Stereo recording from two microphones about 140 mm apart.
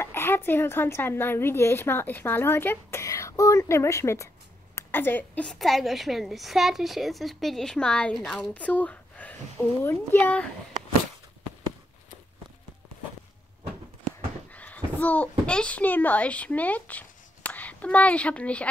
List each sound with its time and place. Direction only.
0.0 s a woman's voice: 15° left (ahead or behind)
14.5 s a child's voice: 10° left (ahead or behind)